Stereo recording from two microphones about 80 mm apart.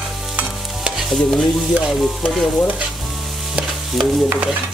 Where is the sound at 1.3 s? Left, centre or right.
Centre.